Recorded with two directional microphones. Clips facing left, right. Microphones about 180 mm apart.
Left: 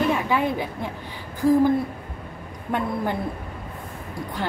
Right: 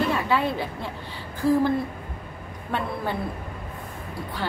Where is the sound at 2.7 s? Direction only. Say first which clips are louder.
Left 3 dB; 15° left (ahead or behind).